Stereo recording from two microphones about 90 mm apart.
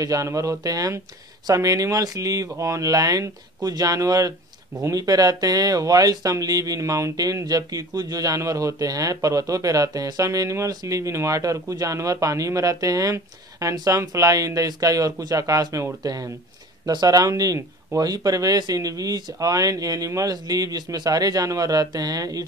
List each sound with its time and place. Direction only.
0.0 s speech: 40° right (ahead or behind)